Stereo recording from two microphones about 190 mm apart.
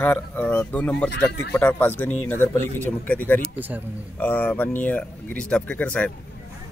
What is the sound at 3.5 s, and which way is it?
Speech, 10° right (ahead or behind).